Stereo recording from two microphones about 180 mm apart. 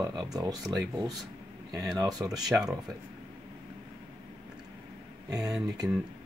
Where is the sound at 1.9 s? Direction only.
20° right (ahead or behind).